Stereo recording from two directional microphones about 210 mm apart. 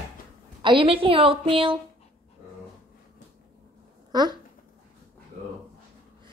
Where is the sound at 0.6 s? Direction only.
25° right (ahead or behind).